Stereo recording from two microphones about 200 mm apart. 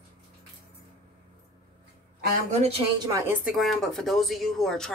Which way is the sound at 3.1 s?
15° right (ahead or behind).